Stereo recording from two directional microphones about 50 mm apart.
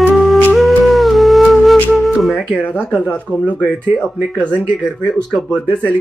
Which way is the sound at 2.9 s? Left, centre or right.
Left.